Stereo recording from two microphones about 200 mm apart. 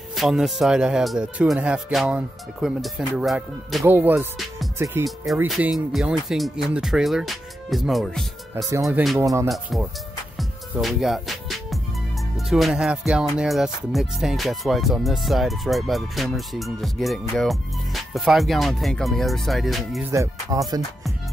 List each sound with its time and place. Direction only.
0.1 s music: centre (ahead or behind)
5.0 s music: centre (ahead or behind)
9.2 s music: 15° right (ahead or behind)
9.5 s music: centre (ahead or behind)
20.1 s music: 15° right (ahead or behind)